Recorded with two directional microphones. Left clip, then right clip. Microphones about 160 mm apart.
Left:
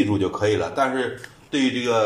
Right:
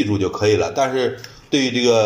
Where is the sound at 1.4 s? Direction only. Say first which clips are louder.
Right 6 dB; 30° right (ahead or behind).